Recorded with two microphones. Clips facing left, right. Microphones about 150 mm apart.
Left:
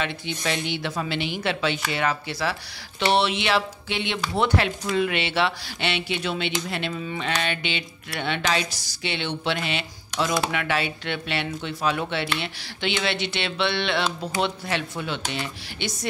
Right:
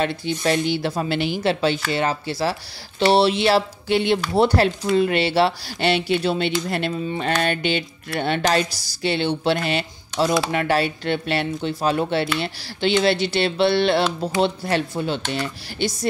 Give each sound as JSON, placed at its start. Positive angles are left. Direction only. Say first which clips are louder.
{"t": 0.0, "sound": "speech", "louder": "right 6 dB", "side_deg": -40}